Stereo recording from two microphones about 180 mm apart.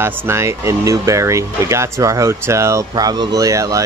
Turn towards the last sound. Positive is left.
turn(degrees=-20)  # may be behind; listen again after turning